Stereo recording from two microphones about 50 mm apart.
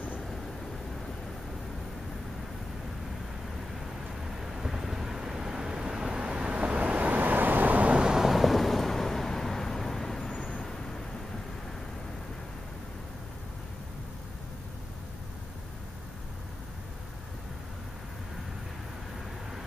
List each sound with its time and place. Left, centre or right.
4.4 s vehicle: centre; by 7.9 s right
7.9 s vehicle: centre